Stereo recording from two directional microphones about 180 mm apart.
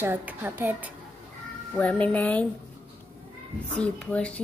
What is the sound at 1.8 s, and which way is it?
Music, 10° left (ahead or behind).